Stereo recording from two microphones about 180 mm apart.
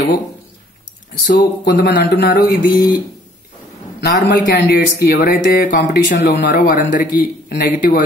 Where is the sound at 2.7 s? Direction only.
25° left (ahead or behind).